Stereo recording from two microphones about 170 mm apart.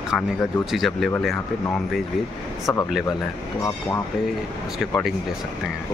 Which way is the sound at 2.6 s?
20° left (ahead or behind).